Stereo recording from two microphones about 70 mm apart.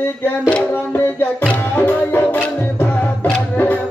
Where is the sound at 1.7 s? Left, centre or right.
Left.